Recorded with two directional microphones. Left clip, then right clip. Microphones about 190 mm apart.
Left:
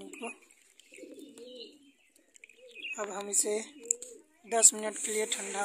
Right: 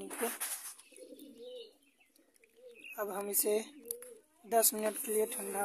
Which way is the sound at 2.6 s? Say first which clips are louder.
Left 9 dB; 60° right (ahead or behind).